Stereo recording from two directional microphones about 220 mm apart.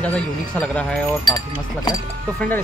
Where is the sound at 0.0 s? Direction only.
5° left (ahead or behind).